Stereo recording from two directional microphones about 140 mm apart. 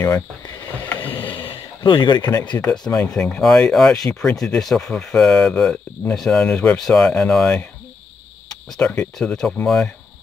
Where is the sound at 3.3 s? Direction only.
5° left (ahead or behind).